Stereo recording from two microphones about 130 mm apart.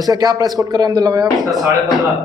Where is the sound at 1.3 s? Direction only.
Centre (ahead or behind).